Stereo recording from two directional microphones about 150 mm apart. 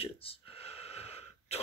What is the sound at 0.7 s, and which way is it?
Wheeze, 45° left (ahead or behind).